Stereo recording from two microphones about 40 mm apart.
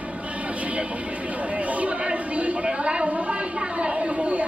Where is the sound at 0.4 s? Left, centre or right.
Right.